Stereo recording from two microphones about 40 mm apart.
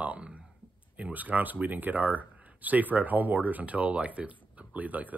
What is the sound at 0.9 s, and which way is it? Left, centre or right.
Speech, right.